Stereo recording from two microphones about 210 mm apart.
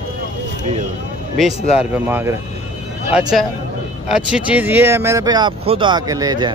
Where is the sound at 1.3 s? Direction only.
Centre (ahead or behind).